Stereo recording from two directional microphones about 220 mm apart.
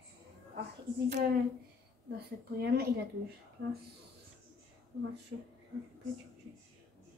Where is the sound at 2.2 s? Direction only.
45° right (ahead or behind).